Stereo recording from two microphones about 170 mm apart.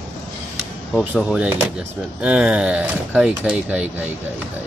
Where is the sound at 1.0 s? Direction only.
Centre (ahead or behind).